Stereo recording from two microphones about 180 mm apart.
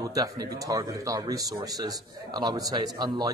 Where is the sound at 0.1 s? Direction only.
20° right (ahead or behind).